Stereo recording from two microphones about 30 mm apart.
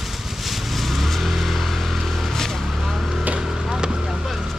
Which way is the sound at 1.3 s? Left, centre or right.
Centre.